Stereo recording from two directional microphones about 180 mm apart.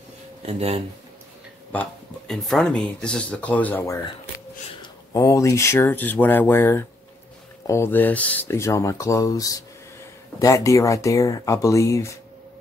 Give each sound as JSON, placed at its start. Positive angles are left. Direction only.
{"t": 0.5, "sound": "speech", "side_deg": -35}
{"t": 1.7, "sound": "speech", "side_deg": 5}
{"t": 5.1, "sound": "speech", "side_deg": 15}